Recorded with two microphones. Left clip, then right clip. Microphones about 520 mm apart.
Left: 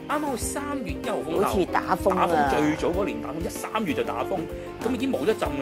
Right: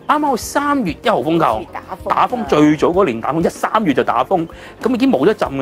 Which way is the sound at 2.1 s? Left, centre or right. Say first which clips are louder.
Right 8 dB; right.